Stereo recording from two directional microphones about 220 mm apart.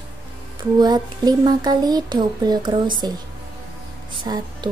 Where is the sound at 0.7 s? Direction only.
20° right (ahead or behind).